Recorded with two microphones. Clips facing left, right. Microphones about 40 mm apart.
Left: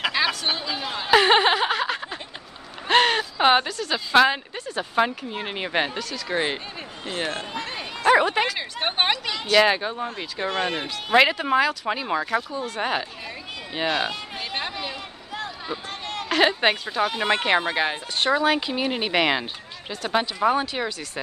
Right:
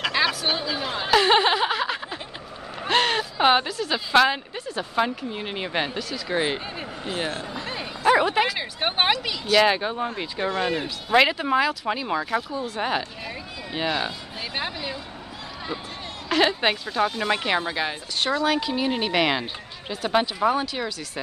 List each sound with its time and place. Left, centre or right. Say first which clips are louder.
0.0 s a sound: even; centre
1.1 s a sound: left 2 dB; centre
3.7 s speech: right 1 dB; centre
4.1 s speech: left 1 dB; centre
4.9 s speech: left 2 dB; centre
5.9 s speech: even; centre
6.3 s speech: right 1 dB; centre
11.1 s speech: left 1 dB; centre
16.3 s speech: left 1 dB; centre
17.2 s speech: left 2 dB; left; by 19.4 s centre
19.9 s speech: right 2 dB; centre
20.4 s speech: left 1 dB; centre